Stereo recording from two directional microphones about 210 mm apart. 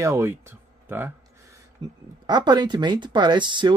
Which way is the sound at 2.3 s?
20° right (ahead or behind).